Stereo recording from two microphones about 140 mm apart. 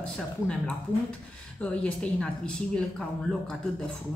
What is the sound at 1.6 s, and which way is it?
Speech, 10° left (ahead or behind).